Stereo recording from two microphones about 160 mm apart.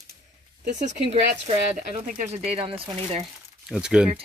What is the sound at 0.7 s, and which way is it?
Speech, 50° right (ahead or behind).